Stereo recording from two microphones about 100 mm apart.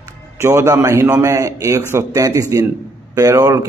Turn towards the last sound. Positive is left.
turn(degrees=-30)  # may be behind; listen again after turning